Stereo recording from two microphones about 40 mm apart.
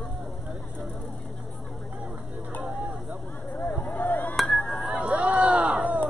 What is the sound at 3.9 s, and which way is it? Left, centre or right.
Chop, left.